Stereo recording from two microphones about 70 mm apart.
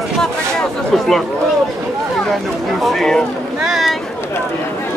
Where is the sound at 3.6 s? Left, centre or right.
Centre.